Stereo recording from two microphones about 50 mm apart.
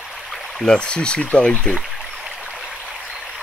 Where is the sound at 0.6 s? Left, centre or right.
Centre.